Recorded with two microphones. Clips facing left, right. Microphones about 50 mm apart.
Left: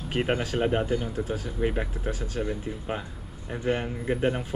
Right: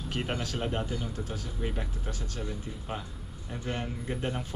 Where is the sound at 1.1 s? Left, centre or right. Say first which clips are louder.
Left 7 dB; centre.